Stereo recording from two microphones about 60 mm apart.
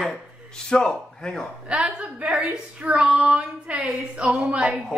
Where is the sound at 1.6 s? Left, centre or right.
Centre.